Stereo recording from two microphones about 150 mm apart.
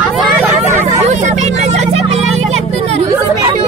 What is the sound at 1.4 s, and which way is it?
Music, 50° right (ahead or behind).